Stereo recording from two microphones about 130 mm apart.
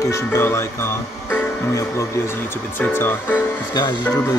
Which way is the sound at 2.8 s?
15° left (ahead or behind).